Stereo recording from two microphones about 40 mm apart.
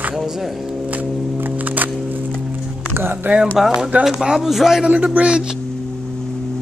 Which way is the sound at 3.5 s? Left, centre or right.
Centre.